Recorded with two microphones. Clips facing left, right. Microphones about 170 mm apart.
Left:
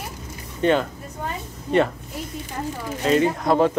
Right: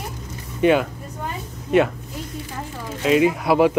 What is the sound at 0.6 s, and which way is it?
Speech, 10° right (ahead or behind).